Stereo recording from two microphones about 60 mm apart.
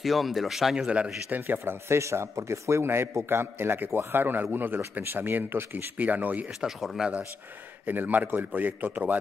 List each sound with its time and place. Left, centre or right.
0.0 s speech: centre
1.3 s speech: right
5.9 s a man's voice: right
6.6 s speech: centre
7.8 s a man's voice: right